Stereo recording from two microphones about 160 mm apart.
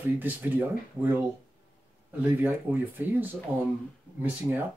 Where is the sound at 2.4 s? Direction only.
10° right (ahead or behind).